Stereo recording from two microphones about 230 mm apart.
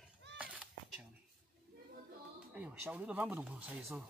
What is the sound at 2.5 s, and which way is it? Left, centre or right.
Speech, centre.